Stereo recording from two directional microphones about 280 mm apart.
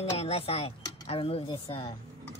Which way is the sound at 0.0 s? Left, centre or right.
Left.